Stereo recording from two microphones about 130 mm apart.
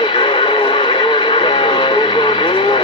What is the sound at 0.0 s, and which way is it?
Radio, 40° left (ahead or behind).